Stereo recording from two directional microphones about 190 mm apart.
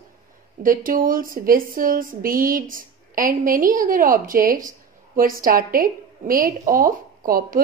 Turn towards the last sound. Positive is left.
turn(degrees=-50)  # may be behind; listen again after turning